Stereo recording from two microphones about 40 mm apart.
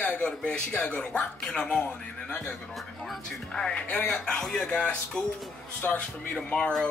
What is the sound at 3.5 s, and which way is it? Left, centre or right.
Speech, left.